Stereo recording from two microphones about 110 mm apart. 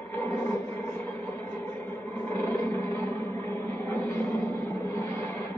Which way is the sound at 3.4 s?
20° left (ahead or behind).